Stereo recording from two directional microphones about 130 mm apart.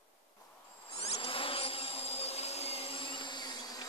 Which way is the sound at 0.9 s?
50° left (ahead or behind).